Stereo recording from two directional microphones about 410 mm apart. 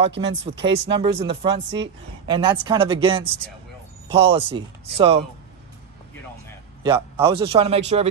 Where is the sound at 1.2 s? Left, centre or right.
Centre.